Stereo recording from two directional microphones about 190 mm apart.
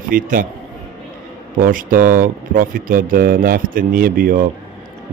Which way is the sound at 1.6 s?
45° right (ahead or behind).